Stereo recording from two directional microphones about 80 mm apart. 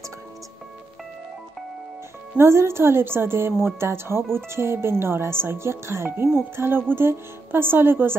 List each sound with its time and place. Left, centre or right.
2.3 s a woman's voice: right